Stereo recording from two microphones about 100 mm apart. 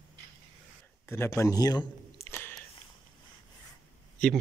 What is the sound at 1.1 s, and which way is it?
A man's voice, 25° left (ahead or behind).